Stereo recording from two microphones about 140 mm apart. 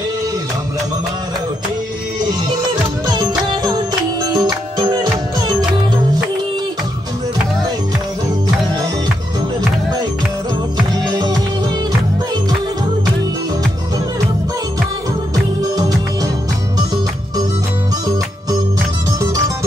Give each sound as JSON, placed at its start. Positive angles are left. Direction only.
{"t": 2.5, "sound": "music", "side_deg": -30}
{"t": 11.1, "sound": "music", "side_deg": -30}
{"t": 15.3, "sound": "music", "side_deg": -25}
{"t": 19.2, "sound": "music", "side_deg": -25}